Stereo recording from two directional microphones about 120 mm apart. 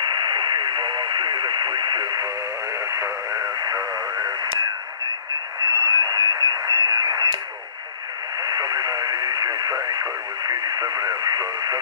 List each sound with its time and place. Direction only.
0.0 s radio: 35° right (ahead or behind)
5.7 s radio: 35° right (ahead or behind)
8.4 s radio: 30° right (ahead or behind)